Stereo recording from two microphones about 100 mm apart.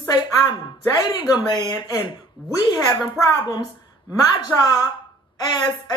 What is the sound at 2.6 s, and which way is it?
A woman's voice, 40° left (ahead or behind).